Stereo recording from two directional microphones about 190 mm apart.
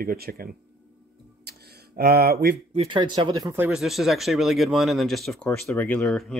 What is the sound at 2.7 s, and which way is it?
Speech, 30° right (ahead or behind).